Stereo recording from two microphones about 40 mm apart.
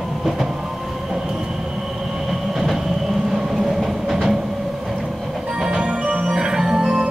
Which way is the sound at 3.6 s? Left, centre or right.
Centre.